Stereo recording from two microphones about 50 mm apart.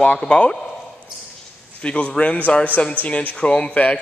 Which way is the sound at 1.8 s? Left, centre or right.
Left.